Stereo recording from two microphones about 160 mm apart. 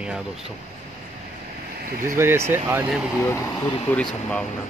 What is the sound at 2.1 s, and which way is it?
Speech, 15° right (ahead or behind).